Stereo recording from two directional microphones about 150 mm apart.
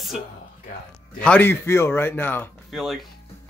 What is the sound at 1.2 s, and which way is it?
Speech, 10° left (ahead or behind).